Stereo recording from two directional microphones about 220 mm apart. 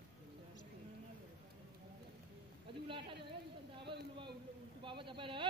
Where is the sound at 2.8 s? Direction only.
25° right (ahead or behind).